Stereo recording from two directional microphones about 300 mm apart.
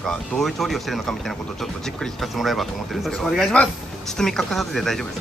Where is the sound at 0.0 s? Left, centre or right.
Centre.